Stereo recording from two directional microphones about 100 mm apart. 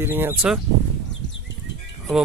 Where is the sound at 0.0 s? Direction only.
20° right (ahead or behind).